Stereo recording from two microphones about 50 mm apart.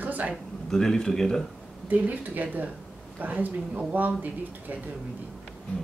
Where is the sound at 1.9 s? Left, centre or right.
Right.